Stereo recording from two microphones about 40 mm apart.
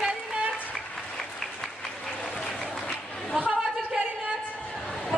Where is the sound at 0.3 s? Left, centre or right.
Right.